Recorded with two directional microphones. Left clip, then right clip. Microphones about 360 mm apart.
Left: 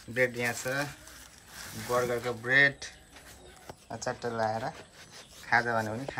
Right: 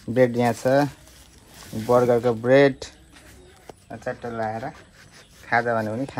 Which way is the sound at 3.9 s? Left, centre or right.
Centre.